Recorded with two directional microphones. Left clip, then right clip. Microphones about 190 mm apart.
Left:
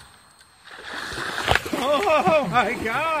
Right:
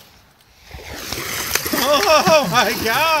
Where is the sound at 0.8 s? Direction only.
20° right (ahead or behind).